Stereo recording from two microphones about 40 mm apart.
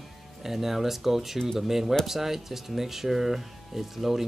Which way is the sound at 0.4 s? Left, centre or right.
Centre.